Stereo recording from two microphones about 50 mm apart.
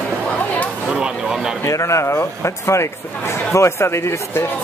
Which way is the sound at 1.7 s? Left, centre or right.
Left.